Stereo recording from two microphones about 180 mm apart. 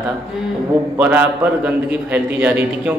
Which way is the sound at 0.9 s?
10° right (ahead or behind).